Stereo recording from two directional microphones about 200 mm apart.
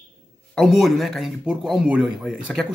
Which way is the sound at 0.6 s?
Centre (ahead or behind).